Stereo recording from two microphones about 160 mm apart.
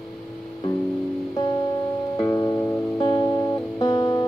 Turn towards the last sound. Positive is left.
turn(degrees=25)  # may be behind; listen again after turning